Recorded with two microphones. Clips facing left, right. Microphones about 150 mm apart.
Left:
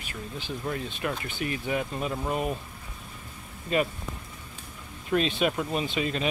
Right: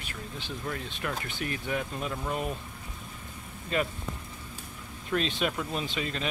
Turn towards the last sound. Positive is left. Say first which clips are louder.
# left 4 dB
turn(degrees=10)  # may be behind; listen again after turning